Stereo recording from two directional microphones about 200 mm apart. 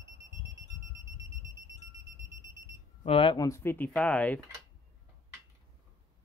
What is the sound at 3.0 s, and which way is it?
Speech, 25° left (ahead or behind).